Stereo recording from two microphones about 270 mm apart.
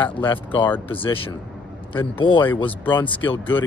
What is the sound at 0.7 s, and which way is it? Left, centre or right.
Speech, centre.